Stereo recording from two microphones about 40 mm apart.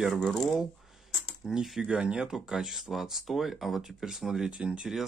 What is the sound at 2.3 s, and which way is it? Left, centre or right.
Speech, centre.